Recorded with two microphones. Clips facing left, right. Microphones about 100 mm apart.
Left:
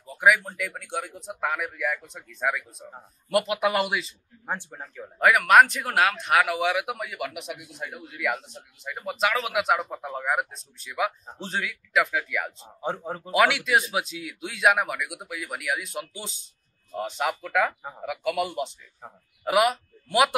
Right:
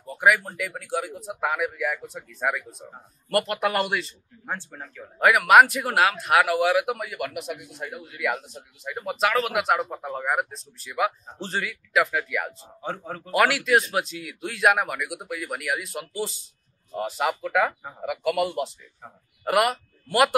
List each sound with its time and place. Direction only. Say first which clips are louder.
0.0 s speech: even; centre (ahead or behind)
4.5 s speech: left 1 dB; 15° left (ahead or behind)
5.2 s speech: right 1 dB; 5° right (ahead or behind)
12.8 s speech: left 2 dB; 15° left (ahead or behind)
13.3 s a man's voice: right 1 dB; centre (ahead or behind)